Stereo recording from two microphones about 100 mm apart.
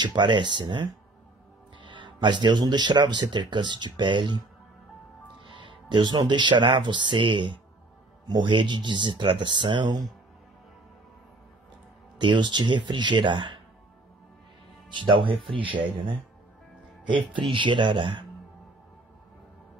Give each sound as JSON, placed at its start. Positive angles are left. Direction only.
{"t": 0.0, "sound": "speech", "side_deg": -50}
{"t": 1.9, "sound": "speech", "side_deg": -50}
{"t": 5.5, "sound": "speech", "side_deg": -55}
{"t": 12.2, "sound": "speech", "side_deg": -50}
{"t": 14.9, "sound": "speech", "side_deg": -50}
{"t": 17.1, "sound": "speech", "side_deg": -55}